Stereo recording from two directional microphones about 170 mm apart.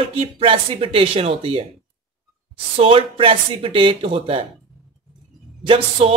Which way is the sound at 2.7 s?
30° right (ahead or behind).